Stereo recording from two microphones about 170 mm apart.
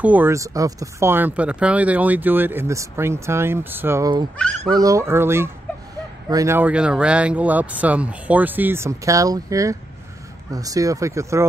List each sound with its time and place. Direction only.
0.0 s speech: 10° right (ahead or behind)